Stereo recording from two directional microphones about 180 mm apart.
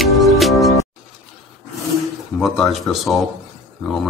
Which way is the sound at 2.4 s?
Centre (ahead or behind).